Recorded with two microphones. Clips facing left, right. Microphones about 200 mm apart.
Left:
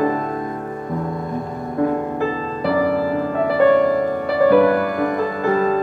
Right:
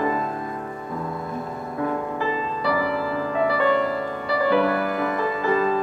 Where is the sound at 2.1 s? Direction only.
45° left (ahead or behind).